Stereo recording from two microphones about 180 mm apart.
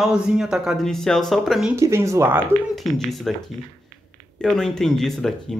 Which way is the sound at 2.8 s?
Centre (ahead or behind).